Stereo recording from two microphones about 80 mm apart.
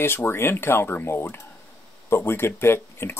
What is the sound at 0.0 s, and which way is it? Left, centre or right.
Speech, left.